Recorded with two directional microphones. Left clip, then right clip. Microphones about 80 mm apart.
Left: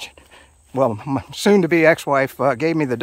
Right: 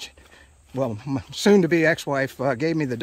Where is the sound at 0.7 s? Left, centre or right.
Left.